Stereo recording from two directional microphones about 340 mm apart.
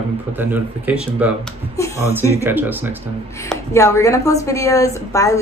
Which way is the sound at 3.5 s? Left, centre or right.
Centre.